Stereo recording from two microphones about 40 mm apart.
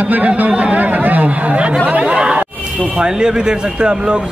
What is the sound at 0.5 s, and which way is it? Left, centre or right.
Speech, right.